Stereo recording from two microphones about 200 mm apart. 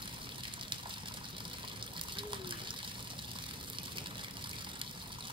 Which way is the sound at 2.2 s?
25° right (ahead or behind).